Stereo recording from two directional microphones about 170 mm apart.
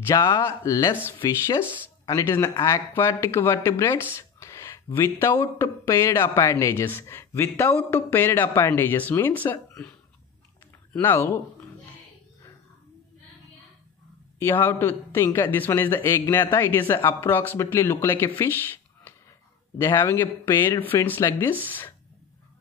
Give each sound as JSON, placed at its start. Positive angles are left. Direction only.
{"t": 0.0, "sound": "speech", "side_deg": 20}
{"t": 1.6, "sound": "speech", "side_deg": -10}
{"t": 2.0, "sound": "speech", "side_deg": 15}
{"t": 14.4, "sound": "speech", "side_deg": 15}